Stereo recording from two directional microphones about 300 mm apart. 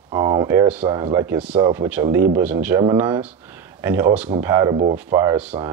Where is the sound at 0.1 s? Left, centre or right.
Centre.